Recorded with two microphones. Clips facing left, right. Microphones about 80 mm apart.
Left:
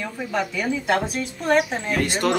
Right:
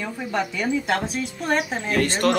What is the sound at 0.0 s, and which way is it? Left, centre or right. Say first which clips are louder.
A woman's voice: even; centre.